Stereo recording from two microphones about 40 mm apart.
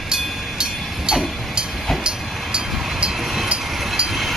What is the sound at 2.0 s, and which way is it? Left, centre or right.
Train, right.